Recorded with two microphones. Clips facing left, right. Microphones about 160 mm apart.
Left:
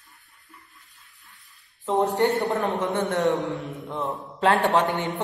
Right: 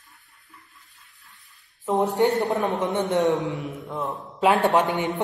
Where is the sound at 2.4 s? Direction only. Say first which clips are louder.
Right 1 dB; 20° right (ahead or behind).